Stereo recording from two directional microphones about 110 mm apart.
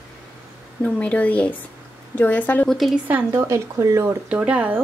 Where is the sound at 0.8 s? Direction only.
10° left (ahead or behind).